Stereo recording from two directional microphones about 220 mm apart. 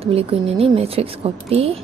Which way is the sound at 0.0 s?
25° right (ahead or behind).